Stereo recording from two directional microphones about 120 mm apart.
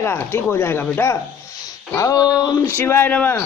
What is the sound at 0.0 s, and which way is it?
A man's voice, 20° left (ahead or behind).